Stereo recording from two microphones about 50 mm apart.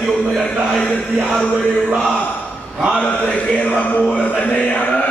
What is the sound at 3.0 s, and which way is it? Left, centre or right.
Chant, left.